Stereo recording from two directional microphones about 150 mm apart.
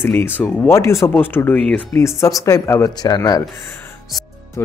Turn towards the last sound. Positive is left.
turn(degrees=25)  # may be behind; listen again after turning